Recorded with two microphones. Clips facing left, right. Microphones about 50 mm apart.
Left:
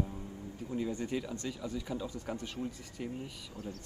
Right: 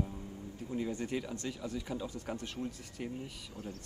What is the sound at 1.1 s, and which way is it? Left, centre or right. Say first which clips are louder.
Speech: left 1 dB; centre.